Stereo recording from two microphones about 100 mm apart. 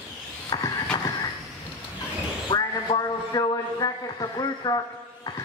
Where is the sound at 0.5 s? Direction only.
45° left (ahead or behind).